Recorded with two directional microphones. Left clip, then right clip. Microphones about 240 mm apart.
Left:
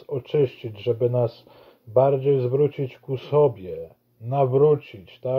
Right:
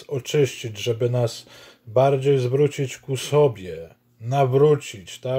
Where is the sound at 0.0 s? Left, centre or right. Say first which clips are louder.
Right 1 dB; centre.